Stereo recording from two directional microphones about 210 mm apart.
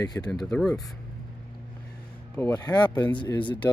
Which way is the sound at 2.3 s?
10° left (ahead or behind).